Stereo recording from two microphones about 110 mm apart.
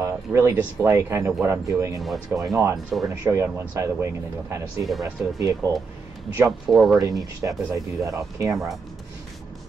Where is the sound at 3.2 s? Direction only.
25° right (ahead or behind).